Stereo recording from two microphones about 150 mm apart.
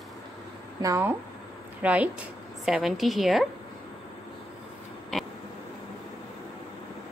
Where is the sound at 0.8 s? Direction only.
20° right (ahead or behind); by 3.4 s centre (ahead or behind).